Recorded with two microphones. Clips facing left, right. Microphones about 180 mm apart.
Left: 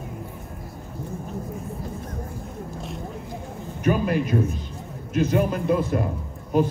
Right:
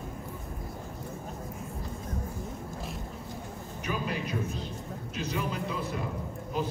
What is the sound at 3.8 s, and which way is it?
A man's voice, 55° left (ahead or behind).